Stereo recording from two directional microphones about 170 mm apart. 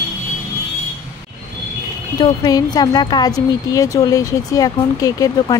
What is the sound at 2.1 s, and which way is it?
A woman's voice, 25° left (ahead or behind).